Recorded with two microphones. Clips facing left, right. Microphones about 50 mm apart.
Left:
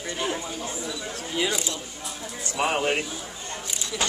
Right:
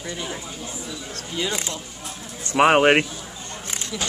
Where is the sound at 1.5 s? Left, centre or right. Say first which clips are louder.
Right 1 dB; right.